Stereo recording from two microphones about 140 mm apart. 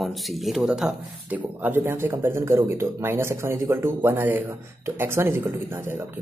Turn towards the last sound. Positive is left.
turn(degrees=-15)  # may be behind; listen again after turning